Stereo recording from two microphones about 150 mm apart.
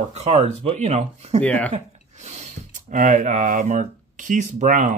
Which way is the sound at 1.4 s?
10° left (ahead or behind).